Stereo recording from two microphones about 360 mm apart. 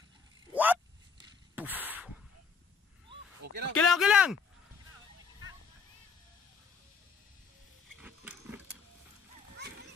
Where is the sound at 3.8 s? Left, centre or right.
Centre.